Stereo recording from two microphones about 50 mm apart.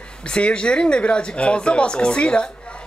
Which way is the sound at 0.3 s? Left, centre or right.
Left.